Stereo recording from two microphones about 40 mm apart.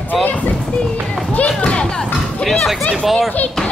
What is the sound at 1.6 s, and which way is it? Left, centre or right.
Music, left.